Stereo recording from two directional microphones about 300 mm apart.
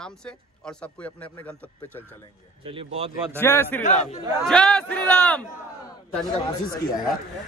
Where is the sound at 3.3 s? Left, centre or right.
Centre.